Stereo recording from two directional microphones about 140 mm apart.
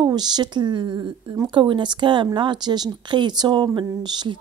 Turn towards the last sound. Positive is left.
turn(degrees=-30)  # may be behind; listen again after turning